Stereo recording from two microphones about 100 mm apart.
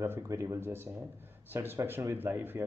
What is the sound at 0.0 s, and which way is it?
A man's voice, 25° right (ahead or behind).